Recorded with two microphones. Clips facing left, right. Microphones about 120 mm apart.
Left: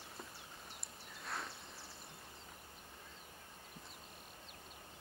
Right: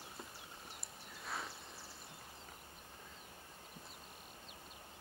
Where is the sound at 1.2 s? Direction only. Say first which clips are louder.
Even; centre (ahead or behind).